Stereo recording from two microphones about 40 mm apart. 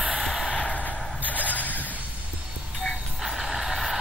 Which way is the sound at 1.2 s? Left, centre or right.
Left.